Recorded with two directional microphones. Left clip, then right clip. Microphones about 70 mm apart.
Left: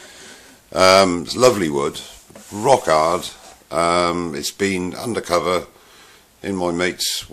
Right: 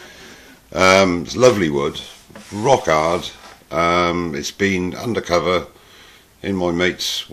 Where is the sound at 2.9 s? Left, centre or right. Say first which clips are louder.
Left 1 dB; centre.